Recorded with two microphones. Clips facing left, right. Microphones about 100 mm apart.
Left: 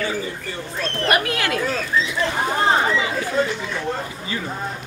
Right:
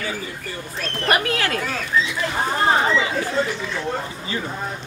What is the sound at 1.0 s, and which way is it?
Speech, 35° right (ahead or behind).